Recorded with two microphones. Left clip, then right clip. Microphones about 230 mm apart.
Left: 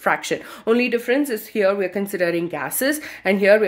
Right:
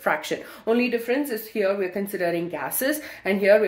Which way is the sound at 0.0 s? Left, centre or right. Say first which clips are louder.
Left 4 dB; left.